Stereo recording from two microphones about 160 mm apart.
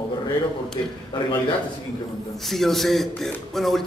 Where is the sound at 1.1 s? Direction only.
30° left (ahead or behind).